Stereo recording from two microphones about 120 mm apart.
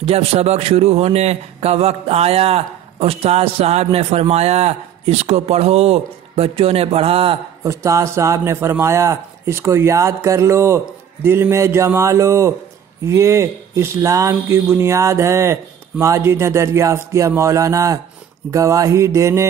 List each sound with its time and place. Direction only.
0.0 s a man's voice: 55° right (ahead or behind)
7.6 s speech: 25° right (ahead or behind)